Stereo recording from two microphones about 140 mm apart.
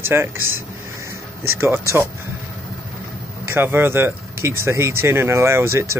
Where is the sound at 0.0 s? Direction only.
15° right (ahead or behind).